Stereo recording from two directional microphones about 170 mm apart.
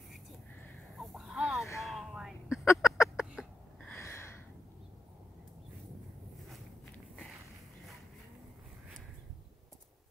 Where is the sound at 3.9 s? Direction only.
15° left (ahead or behind).